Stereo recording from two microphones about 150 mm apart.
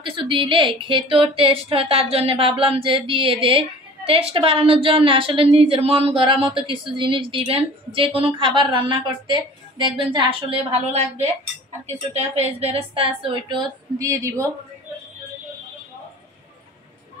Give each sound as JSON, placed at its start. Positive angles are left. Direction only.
{"t": 0.0, "sound": "a woman's voice", "side_deg": -35}